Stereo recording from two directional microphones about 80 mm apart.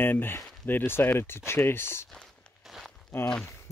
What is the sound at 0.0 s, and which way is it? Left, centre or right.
Speech, left.